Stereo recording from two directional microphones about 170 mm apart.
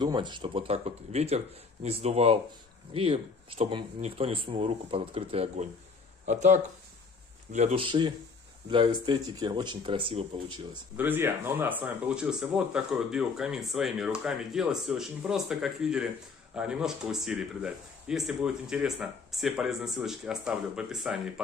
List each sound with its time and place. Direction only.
0.0 s speech: 25° right (ahead or behind)
11.0 s speech: 10° right (ahead or behind)